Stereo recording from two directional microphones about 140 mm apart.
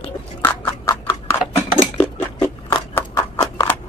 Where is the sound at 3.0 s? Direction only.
20° left (ahead or behind).